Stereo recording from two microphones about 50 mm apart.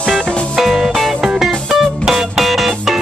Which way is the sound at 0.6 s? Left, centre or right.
Centre.